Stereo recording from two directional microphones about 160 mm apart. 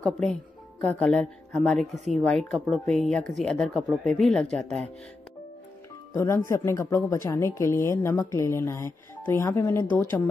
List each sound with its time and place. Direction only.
0.0 s speech: 5° left (ahead or behind)
6.1 s speech: 20° left (ahead or behind)